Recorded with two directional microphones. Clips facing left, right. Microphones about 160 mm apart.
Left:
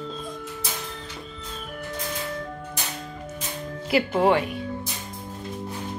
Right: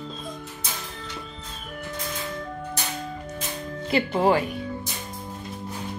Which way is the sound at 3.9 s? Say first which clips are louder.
Left 1 dB; 5° left (ahead or behind).